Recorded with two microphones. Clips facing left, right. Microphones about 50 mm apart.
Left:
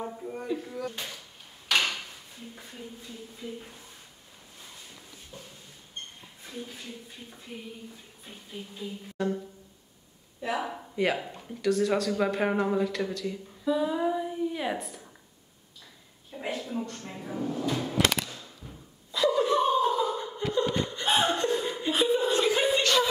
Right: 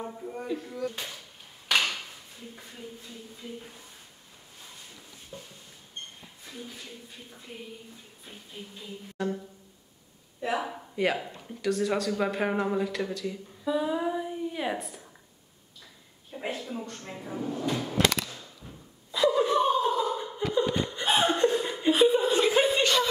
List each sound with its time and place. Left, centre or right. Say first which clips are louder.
0.0 s a sound: left 1 dB; centre
0.4 s speech: right 1 dB; centre
1.7 s a sound: even; centre
3.3 s speech: left 2 dB; centre
5.3 s a sound: right 3 dB; right
8.3 s speech: left 2 dB; centre
10.6 s a woman's voice: even; centre
16.5 s speech: left 3 dB; centre
18.3 s a sound: even; centre
21.0 s chuckle: right 1 dB; centre
21.5 s laughter: right 3 dB; centre
22.2 s chuckle: right 1 dB; centre